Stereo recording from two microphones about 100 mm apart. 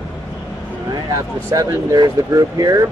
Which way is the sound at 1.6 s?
30° right (ahead or behind).